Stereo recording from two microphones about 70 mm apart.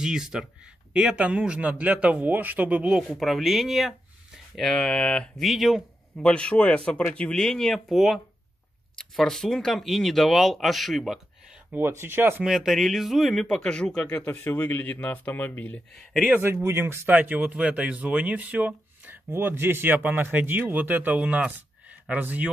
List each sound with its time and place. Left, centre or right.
0.0 s a man's voice: centre
2.9 s speech: centre
5.4 s speech: centre
6.1 s speech: centre
12.0 s speech: right
12.4 s speech: centre; by 15.8 s left
15.9 s speech: centre
16.3 s a man's voice: right
19.0 s a man's voice: right